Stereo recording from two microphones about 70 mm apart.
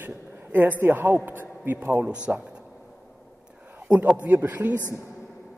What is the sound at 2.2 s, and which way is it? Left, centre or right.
Speech, centre.